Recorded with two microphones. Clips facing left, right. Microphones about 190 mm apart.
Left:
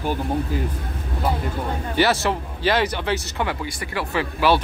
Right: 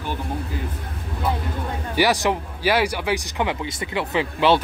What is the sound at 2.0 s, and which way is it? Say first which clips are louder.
Speech: right 1 dB; 15° right (ahead or behind).